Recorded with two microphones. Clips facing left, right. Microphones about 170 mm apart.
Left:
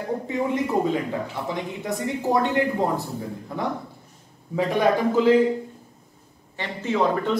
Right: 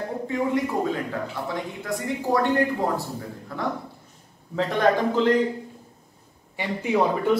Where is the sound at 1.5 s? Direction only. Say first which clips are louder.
Left 3 dB; 20° left (ahead or behind).